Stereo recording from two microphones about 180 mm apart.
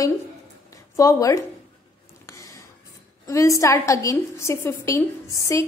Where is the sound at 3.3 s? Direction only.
15° left (ahead or behind).